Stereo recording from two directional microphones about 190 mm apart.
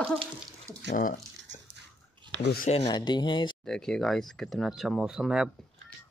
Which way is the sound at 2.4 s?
60° left (ahead or behind).